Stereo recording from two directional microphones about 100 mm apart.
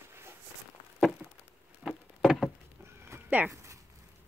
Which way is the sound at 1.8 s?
5° right (ahead or behind).